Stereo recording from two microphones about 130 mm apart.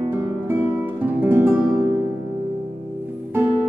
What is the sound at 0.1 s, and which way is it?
Guitar, 15° right (ahead or behind).